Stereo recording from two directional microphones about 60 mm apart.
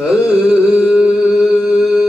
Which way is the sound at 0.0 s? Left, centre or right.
Centre.